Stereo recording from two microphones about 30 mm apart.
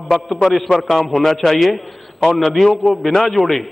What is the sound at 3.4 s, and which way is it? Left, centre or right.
Speech, left.